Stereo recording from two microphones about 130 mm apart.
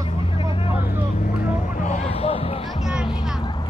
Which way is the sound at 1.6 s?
70° left (ahead or behind).